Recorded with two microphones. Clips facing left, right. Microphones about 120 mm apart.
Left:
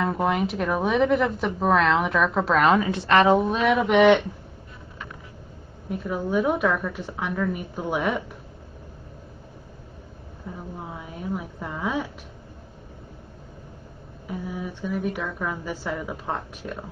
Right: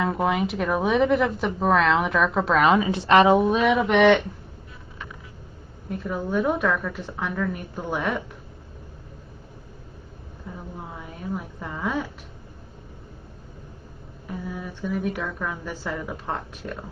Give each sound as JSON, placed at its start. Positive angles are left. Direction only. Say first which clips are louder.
{"t": 0.0, "sound": "speech", "louder": "even", "side_deg": 0}
{"t": 2.8, "sound": "a woman's voice", "louder": "right 2 dB", "side_deg": -15}
{"t": 3.3, "sound": "speech", "louder": "right 1 dB", "side_deg": 0}
{"t": 5.9, "sound": "speech", "louder": "left 1 dB", "side_deg": 5}
{"t": 11.0, "sound": "a woman's voice", "louder": "left 1 dB", "side_deg": 5}
{"t": 14.5, "sound": "speech", "louder": "right 1 dB", "side_deg": 5}